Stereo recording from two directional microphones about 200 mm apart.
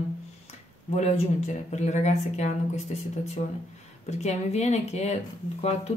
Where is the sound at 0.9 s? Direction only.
35° left (ahead or behind).